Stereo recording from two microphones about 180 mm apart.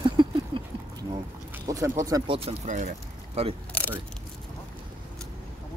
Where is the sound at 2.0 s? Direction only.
20° right (ahead or behind).